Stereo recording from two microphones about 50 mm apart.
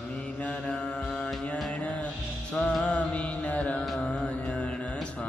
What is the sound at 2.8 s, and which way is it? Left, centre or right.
Music, left.